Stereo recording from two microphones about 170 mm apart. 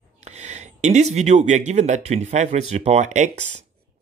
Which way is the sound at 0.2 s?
40° right (ahead or behind).